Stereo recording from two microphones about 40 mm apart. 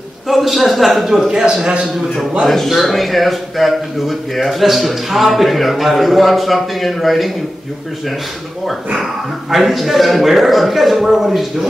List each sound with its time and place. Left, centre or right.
0.3 s a man's voice: centre
1.4 s a man's voice: right
2.4 s a man's voice: centre
8.9 s a man's voice: centre